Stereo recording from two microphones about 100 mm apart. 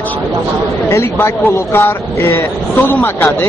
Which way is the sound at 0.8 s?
25° left (ahead or behind).